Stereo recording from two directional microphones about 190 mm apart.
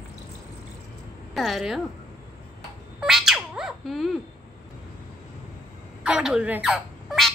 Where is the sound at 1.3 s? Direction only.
Centre (ahead or behind).